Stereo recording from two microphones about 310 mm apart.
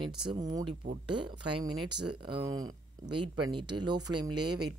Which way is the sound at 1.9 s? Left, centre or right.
Right.